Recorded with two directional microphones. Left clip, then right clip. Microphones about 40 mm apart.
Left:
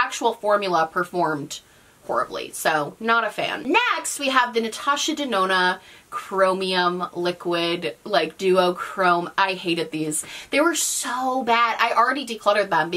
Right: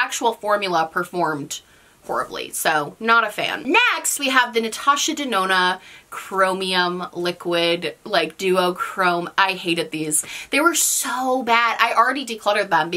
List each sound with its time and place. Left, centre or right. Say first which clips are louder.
0.0 s speech: right 1 dB; right